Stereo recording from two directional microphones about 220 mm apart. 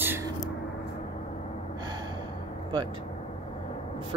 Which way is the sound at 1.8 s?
20° right (ahead or behind).